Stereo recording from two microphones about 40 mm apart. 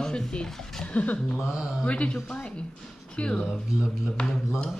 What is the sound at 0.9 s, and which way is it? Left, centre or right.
Speech, left.